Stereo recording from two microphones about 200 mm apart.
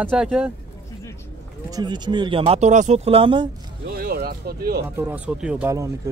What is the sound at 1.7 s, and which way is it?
Speech, 20° right (ahead or behind).